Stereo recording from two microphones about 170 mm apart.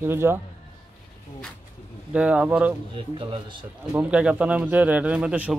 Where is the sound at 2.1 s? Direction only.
5° right (ahead or behind).